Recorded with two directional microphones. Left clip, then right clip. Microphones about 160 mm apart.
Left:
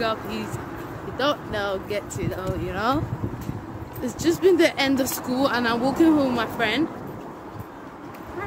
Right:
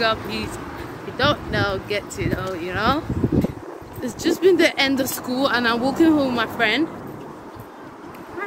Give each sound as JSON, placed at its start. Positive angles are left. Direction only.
{"t": 0.0, "sound": "speech", "side_deg": 5}
{"t": 4.0, "sound": "speech", "side_deg": 10}